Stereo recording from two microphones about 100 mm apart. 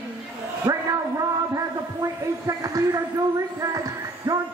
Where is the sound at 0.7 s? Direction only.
25° right (ahead or behind).